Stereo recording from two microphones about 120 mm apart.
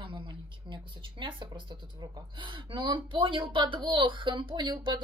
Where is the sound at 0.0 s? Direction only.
40° right (ahead or behind).